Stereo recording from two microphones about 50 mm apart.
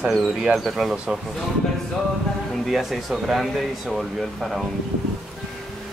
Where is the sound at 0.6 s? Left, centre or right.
Centre.